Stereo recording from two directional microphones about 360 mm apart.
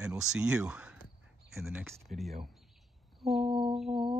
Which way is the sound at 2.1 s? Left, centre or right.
Centre.